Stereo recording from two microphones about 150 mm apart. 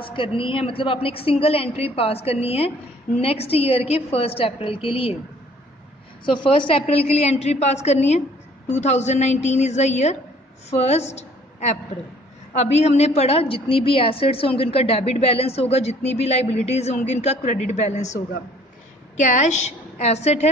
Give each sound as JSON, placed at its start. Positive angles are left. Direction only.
{"t": 0.1, "sound": "a woman's voice", "side_deg": 35}
{"t": 6.2, "sound": "a woman's voice", "side_deg": 35}